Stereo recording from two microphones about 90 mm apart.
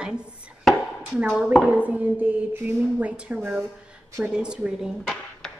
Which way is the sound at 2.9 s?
15° right (ahead or behind).